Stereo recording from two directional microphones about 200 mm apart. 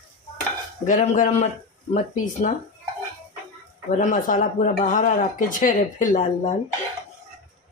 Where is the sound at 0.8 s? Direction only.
40° left (ahead or behind).